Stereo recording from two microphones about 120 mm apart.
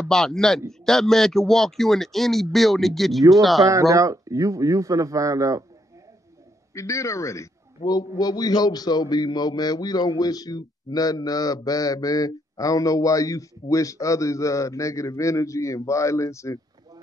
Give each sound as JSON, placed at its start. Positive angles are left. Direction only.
{"t": 0.1, "sound": "speech", "side_deg": 5}
{"t": 3.6, "sound": "a man's voice", "side_deg": -25}
{"t": 6.7, "sound": "a man's voice", "side_deg": 25}